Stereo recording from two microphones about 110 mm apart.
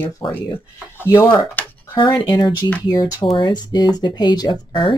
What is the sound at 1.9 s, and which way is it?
Speech, 45° left (ahead or behind).